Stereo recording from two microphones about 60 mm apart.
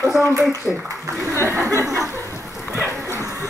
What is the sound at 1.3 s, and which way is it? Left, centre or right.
Speech, right.